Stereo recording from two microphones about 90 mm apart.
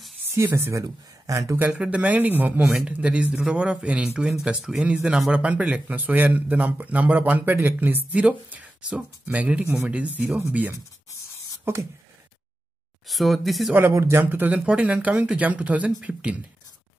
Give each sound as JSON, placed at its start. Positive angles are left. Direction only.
{"t": 0.4, "sound": "speech", "side_deg": -30}
{"t": 1.6, "sound": "speech", "side_deg": -15}
{"t": 11.7, "sound": "beatboxing", "side_deg": -25}
{"t": 13.1, "sound": "speech", "side_deg": 0}
{"t": 13.7, "sound": "speech", "side_deg": -30}